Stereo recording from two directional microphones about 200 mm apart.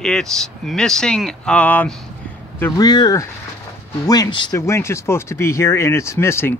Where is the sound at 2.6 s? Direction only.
20° left (ahead or behind).